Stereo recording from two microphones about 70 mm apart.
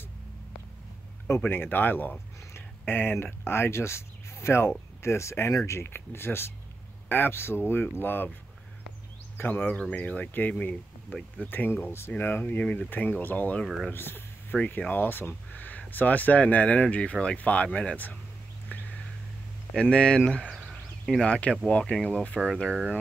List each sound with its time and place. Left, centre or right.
1.4 s speech: left
9.6 s speech: centre
18.7 s a sound: left
19.8 s speech: centre
21.0 s a sound: centre
21.3 s speech: centre